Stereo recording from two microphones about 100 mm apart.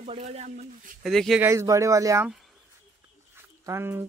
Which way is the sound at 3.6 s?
25° right (ahead or behind).